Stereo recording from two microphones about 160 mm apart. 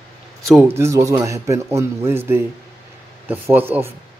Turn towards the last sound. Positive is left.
turn(degrees=-15)  # may be behind; listen again after turning